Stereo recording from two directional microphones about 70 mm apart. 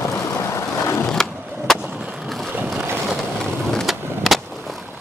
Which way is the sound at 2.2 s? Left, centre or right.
Centre.